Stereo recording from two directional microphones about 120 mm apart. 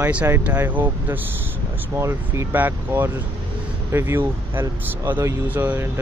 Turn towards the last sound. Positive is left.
turn(degrees=-15)  # may be behind; listen again after turning